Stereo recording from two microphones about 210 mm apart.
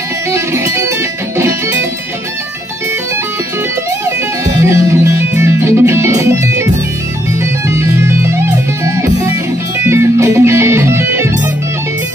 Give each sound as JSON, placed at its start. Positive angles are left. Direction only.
{"t": 0.3, "sound": "music", "side_deg": -15}
{"t": 4.6, "sound": "music", "side_deg": -15}